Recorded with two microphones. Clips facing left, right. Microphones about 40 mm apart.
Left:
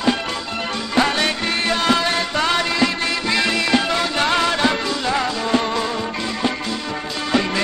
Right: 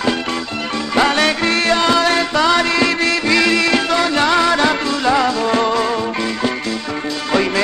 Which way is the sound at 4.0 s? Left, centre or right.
Right.